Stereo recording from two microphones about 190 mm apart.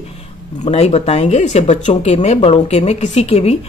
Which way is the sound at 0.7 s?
35° left (ahead or behind).